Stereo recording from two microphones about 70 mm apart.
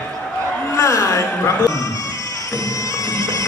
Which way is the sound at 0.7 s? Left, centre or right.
Left.